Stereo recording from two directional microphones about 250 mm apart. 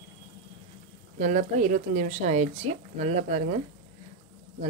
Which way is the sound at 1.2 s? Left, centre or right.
Right.